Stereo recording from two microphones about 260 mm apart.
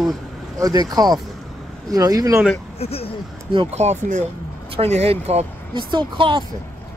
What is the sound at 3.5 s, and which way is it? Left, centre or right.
Speech, right.